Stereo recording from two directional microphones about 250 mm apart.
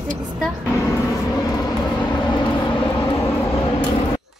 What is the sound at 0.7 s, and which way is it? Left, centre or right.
Vehicle, centre.